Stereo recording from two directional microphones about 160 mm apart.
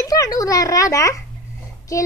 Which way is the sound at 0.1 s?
20° left (ahead or behind).